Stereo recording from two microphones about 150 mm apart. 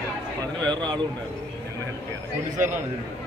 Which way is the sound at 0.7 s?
30° right (ahead or behind).